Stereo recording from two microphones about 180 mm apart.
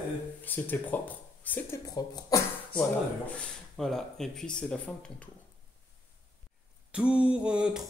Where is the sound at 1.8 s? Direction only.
20° left (ahead or behind).